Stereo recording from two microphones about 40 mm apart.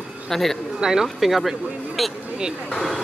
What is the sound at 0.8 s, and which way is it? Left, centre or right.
Speech, centre.